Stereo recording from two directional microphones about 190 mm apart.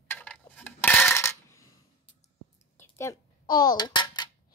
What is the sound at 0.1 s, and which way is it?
Coin, 10° left (ahead or behind).